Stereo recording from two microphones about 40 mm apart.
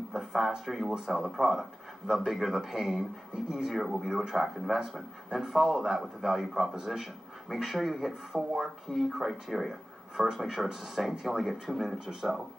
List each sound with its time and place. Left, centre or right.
0.1 s a sound: centre
0.7 s speech: centre
10.1 s speech: centre
10.4 s speech: centre